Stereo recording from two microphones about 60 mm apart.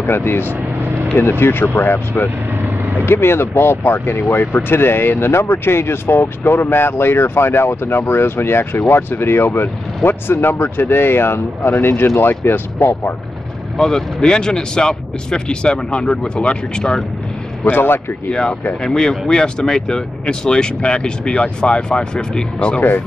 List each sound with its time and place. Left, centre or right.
0.0 s speech: left
2.6 s vehicle: right
3.1 s speech: left
13.7 s speech: centre
17.6 s speech: left
18.3 s speech: centre